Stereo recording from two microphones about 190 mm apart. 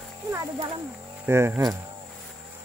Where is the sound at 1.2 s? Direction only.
15° right (ahead or behind).